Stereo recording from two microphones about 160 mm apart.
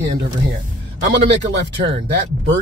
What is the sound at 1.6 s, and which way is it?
Speech, 90° right.